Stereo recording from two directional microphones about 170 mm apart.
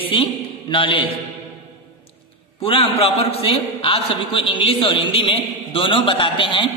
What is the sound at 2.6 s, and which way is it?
A man's voice, 35° left (ahead or behind).